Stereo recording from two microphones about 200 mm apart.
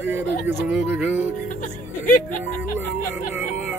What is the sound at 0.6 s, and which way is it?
Music, 5° right (ahead or behind).